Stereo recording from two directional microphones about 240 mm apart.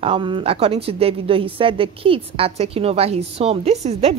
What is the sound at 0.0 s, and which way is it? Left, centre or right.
A woman's voice, right.